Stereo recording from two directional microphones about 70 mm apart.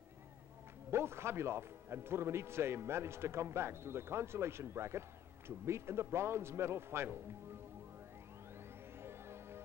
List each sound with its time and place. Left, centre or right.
0.8 s speech: right
9.0 s music: right